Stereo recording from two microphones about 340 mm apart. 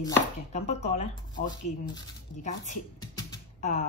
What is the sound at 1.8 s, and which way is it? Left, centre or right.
Speech, centre.